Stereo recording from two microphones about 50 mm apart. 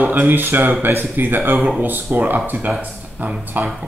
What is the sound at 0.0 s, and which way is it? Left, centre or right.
Speech, right.